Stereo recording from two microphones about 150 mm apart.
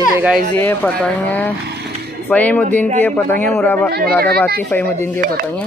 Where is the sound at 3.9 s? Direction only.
90° right.